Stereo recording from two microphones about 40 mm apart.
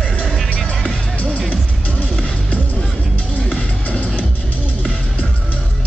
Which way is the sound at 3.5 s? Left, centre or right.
Left.